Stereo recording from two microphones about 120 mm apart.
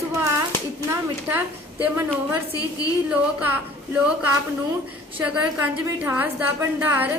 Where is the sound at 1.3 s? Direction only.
15° right (ahead or behind).